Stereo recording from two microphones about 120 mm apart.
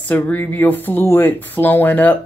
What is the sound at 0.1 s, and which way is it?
Speech, 15° left (ahead or behind).